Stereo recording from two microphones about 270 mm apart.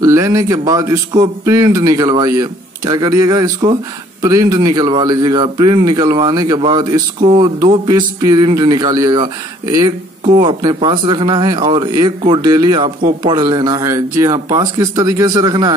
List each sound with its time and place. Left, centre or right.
0.0 s a man's voice: centre